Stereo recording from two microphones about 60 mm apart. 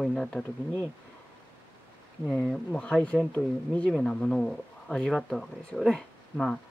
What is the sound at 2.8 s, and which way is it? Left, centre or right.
Speech, left.